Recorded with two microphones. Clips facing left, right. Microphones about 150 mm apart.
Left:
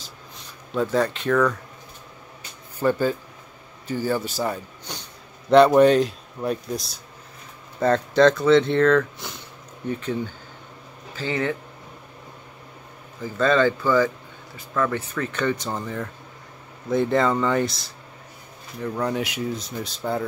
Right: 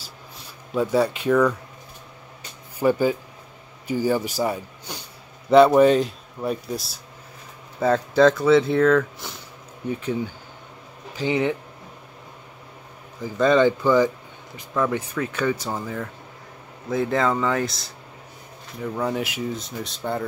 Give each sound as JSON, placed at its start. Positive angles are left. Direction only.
{"t": 0.7, "sound": "speech", "side_deg": -10}
{"t": 2.8, "sound": "speech", "side_deg": -10}
{"t": 13.2, "sound": "speech", "side_deg": -15}